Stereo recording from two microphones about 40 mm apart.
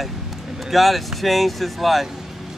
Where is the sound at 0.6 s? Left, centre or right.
Centre.